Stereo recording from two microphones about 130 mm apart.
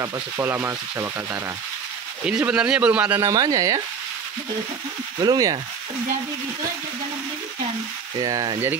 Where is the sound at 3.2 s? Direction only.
25° right (ahead or behind).